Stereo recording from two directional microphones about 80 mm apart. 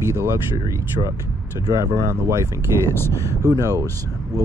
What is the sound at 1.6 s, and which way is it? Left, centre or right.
Speech, right.